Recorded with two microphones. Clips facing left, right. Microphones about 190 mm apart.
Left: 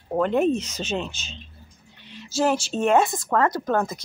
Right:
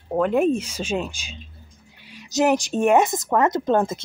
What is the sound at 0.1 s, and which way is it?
A woman's voice, 5° right (ahead or behind).